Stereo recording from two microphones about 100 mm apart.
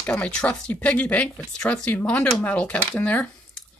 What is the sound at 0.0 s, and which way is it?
Speech, 15° left (ahead or behind).